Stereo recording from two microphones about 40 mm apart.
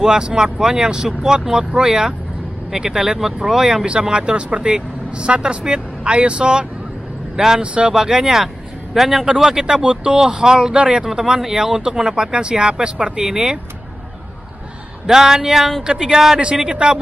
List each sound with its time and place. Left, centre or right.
0.0 s speech: centre
4.1 s speech: right
7.6 s speech: right
7.9 s speech: centre
15.0 s speech: centre